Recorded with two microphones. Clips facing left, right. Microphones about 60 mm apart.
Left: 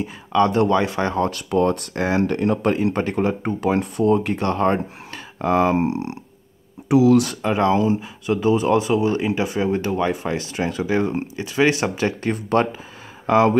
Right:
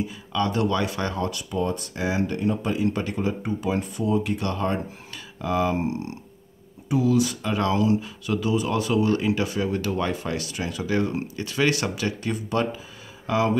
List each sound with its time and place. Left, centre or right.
0.0 s speech: left
1.5 s speech: left
2.7 s speech: left
5.8 s speech: left
6.9 s speech: left
7.4 s speech: left
8.8 s speech: left